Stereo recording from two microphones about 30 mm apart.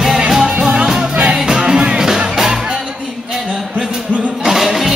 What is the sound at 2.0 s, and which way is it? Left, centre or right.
Music, centre.